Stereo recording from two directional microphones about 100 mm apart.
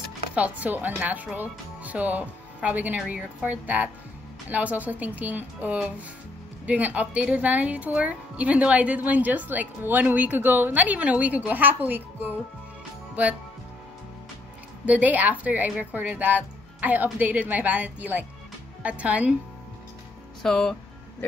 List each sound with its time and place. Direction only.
0.3 s speech: 15° right (ahead or behind)
14.9 s speech: 15° right (ahead or behind)
20.4 s speech: 5° left (ahead or behind)